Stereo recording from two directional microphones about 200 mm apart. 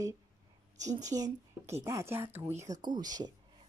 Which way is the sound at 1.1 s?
15° right (ahead or behind).